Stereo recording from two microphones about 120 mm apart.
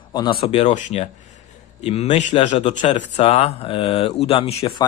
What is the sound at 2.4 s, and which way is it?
Speech, 75° left (ahead or behind).